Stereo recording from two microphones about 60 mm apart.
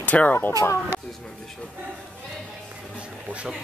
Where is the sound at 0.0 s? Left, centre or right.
Left.